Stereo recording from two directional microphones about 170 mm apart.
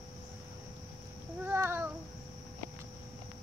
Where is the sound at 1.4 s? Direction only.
15° right (ahead or behind).